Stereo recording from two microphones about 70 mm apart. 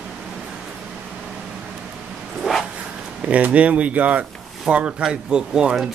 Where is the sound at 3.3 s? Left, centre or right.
Centre.